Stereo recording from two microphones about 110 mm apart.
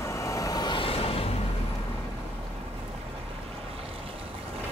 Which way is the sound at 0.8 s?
60° left (ahead or behind).